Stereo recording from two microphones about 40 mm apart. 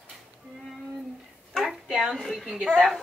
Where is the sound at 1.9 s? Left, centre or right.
Centre.